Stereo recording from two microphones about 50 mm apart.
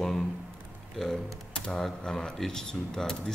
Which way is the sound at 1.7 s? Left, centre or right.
Centre.